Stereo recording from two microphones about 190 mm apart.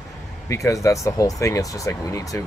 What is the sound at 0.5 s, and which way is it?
Speech, 15° left (ahead or behind).